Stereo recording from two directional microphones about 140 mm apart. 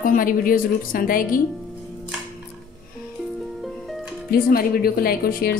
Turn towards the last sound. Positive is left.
turn(degrees=90)